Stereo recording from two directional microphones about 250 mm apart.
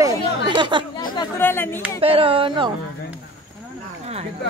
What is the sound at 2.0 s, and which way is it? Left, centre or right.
Speech, right.